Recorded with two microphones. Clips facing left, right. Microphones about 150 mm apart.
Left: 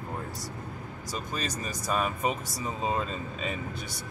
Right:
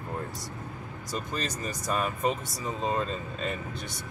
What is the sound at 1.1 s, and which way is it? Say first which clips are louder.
Speech: right 1 dB; 5° left (ahead or behind).